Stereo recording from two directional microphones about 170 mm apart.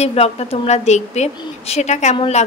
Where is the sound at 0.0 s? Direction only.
40° left (ahead or behind).